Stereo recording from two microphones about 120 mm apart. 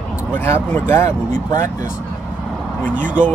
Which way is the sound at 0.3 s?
15° left (ahead or behind).